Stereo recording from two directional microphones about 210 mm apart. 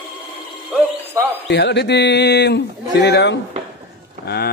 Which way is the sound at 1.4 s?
55° left (ahead or behind).